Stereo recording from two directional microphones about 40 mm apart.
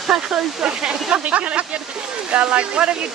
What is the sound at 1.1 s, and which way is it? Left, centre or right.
Speech, right.